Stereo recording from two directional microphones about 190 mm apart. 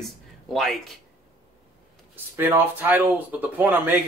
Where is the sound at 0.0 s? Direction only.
Centre (ahead or behind).